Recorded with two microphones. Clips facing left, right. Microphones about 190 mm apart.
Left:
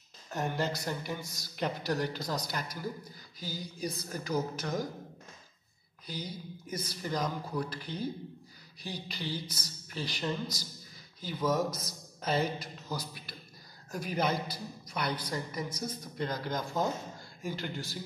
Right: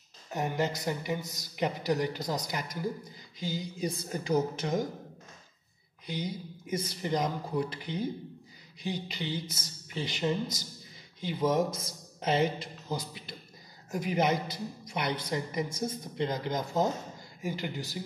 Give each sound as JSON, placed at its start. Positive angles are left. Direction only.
{"t": 0.3, "sound": "speech", "side_deg": -15}
{"t": 6.0, "sound": "speech", "side_deg": -20}
{"t": 9.1, "sound": "speech", "side_deg": -20}